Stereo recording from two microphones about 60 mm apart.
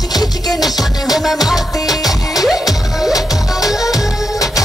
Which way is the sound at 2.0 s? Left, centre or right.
Left.